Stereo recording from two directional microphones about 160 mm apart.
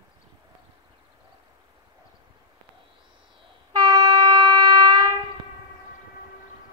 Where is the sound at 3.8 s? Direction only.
20° right (ahead or behind).